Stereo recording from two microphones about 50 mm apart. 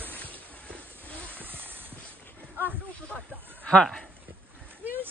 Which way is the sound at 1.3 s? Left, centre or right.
Right.